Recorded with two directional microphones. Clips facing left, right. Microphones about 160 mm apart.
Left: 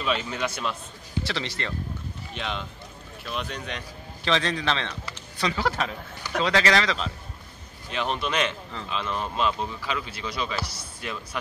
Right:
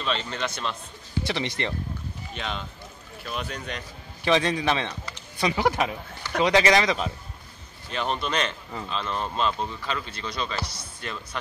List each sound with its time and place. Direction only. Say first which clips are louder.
0.0 s speech: left 1 dB; 5° left (ahead or behind)
1.2 s a man's voice: right 4 dB; 15° right (ahead or behind)
2.3 s speech: left 1 dB; centre (ahead or behind)
4.2 s a man's voice: right 3 dB; 15° right (ahead or behind)
7.9 s speech: even; centre (ahead or behind)